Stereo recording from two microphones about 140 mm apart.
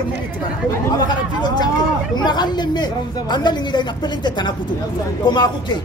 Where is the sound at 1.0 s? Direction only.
30° left (ahead or behind).